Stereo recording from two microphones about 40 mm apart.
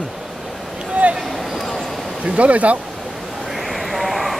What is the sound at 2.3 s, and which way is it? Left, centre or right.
Speech, right.